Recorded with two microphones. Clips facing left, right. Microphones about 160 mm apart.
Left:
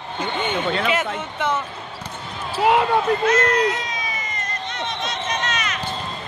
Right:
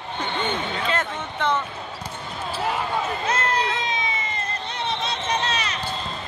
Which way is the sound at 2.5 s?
75° left (ahead or behind).